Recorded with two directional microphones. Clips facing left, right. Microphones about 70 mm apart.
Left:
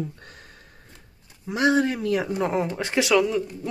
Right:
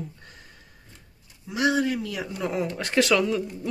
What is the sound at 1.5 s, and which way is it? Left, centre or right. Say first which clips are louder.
Speech: left 2 dB; left.